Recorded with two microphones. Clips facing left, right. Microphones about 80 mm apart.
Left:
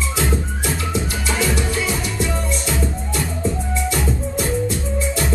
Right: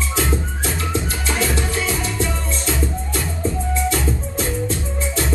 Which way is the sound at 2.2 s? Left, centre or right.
Right.